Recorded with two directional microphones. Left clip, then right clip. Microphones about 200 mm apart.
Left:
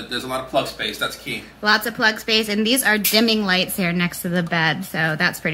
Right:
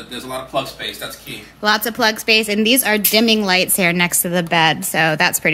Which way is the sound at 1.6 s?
15° right (ahead or behind).